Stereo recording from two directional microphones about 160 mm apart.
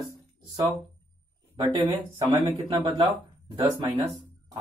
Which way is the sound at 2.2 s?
20° right (ahead or behind).